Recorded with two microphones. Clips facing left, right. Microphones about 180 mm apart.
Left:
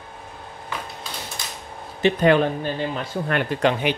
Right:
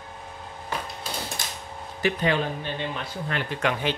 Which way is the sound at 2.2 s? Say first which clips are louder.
Left 8 dB; 55° left (ahead or behind).